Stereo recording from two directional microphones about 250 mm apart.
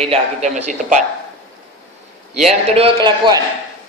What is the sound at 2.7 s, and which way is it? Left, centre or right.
Speech, right.